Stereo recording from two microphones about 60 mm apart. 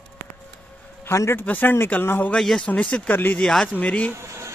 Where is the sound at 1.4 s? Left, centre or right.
Left.